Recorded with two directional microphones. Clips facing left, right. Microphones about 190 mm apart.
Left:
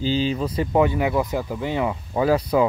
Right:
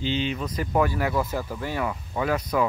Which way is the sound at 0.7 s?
20° left (ahead or behind).